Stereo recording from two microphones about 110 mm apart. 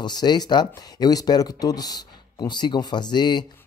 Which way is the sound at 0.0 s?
40° left (ahead or behind).